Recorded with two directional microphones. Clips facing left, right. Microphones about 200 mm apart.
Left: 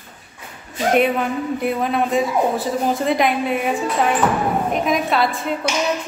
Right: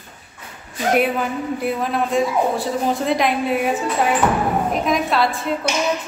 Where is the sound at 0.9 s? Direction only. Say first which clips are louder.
Left 1 dB; centre (ahead or behind).